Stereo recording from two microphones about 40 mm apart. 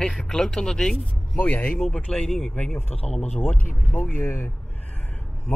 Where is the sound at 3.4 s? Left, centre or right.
Left.